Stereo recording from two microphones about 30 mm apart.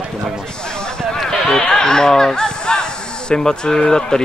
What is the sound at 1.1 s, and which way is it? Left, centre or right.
Run, centre.